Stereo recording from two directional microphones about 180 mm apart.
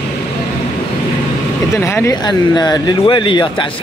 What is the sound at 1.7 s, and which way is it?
Speech, 15° left (ahead or behind).